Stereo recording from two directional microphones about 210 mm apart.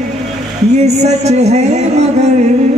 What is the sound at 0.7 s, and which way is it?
Speech, 30° right (ahead or behind).